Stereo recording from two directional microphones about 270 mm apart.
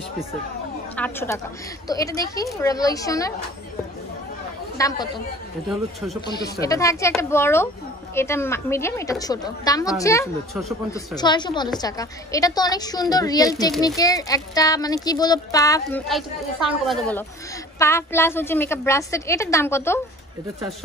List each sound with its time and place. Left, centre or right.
0.9 s a woman's voice: centre
4.7 s a woman's voice: centre
6.2 s a woman's voice: centre
16.8 s a woman's voice: centre